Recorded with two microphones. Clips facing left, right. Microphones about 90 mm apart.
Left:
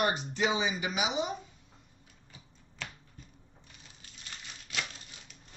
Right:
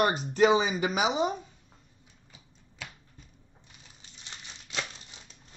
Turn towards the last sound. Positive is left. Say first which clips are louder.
# right 1 dB
turn(degrees=-20)  # may be behind; listen again after turning